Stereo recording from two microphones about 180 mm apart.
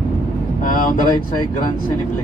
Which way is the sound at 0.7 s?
50° left (ahead or behind).